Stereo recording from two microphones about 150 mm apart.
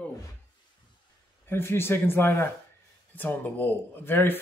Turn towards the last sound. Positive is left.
turn(degrees=15)  # may be behind; listen again after turning